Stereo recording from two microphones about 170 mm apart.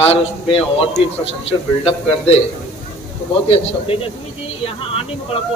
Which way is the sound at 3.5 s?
35° left (ahead or behind).